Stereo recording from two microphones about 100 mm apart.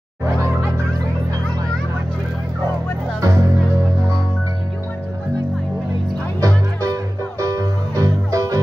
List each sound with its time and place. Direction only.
3.2 s music: 35° right (ahead or behind)
6.4 s music: 35° right (ahead or behind)